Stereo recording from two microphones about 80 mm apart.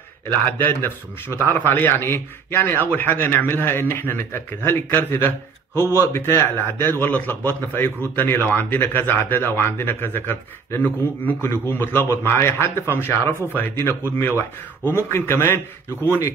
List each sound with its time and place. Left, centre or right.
0.7 s a man's voice: left
6.9 s a man's voice: left